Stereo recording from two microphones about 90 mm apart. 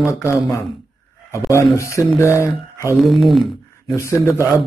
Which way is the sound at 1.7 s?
35° left (ahead or behind).